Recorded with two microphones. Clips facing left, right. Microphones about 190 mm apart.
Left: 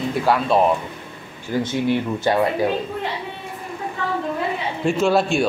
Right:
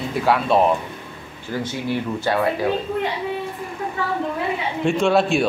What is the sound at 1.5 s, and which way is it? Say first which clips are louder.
Speech: left 4 dB; 15° left (ahead or behind).